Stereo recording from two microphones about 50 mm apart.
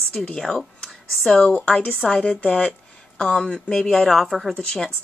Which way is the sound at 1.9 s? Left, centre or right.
Centre.